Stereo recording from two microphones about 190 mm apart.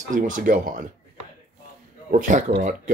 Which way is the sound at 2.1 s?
45° right (ahead or behind).